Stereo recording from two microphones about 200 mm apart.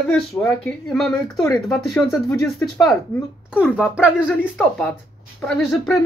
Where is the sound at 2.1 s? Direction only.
15° left (ahead or behind).